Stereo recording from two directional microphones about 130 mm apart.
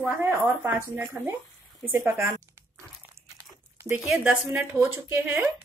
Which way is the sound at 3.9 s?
5° right (ahead or behind).